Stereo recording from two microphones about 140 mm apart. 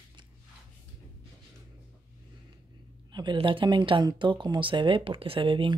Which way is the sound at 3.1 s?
30° right (ahead or behind).